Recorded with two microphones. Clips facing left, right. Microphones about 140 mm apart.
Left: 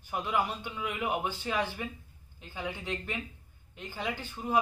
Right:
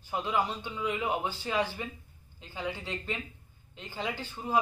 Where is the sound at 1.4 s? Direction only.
15° right (ahead or behind).